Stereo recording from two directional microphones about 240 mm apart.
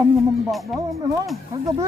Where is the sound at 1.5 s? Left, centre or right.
Centre.